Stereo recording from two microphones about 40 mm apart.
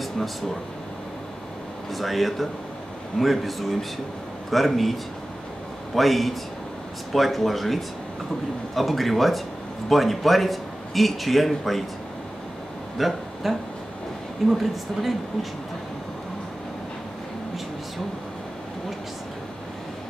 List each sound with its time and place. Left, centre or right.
1.9 s a man's voice: centre
5.9 s a man's voice: centre
12.9 s a man's voice: centre